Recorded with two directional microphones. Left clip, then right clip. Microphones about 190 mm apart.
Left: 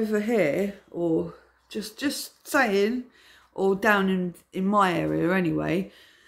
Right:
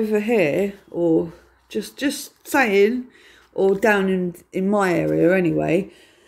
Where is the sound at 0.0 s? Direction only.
5° left (ahead or behind).